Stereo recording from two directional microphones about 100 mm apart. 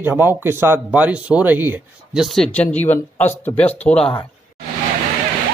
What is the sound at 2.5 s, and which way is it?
Speech, 15° left (ahead or behind).